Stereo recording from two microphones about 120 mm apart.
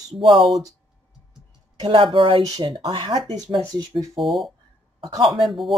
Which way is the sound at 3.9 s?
Centre (ahead or behind).